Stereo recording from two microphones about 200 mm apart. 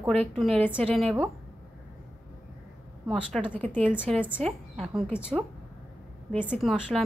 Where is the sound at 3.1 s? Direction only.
Centre (ahead or behind).